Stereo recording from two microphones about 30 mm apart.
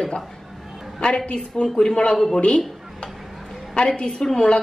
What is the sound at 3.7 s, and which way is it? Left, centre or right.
Speech, left.